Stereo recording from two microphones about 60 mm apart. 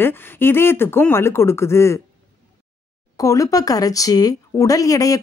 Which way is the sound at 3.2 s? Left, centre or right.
Left.